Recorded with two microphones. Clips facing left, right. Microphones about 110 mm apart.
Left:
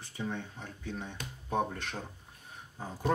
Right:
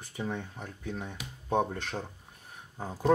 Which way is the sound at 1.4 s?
25° right (ahead or behind).